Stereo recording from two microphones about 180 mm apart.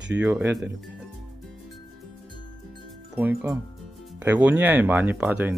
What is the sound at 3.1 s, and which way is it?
Speech, 10° right (ahead or behind).